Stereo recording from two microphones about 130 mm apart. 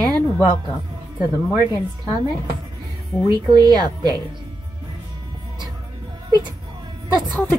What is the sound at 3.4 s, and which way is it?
Speech, 35° right (ahead or behind).